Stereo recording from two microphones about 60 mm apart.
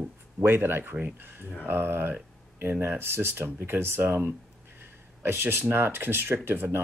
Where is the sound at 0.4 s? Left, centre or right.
Right.